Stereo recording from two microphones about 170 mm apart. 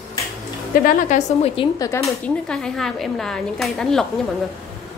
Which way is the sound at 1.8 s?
15° left (ahead or behind).